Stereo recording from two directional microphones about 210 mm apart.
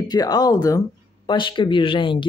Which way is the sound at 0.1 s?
20° left (ahead or behind).